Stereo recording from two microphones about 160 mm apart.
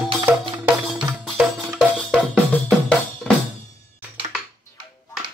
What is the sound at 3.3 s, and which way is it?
Drum kit, 5° left (ahead or behind).